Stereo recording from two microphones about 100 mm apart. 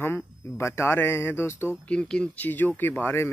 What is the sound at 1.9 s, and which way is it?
Speech, 10° left (ahead or behind).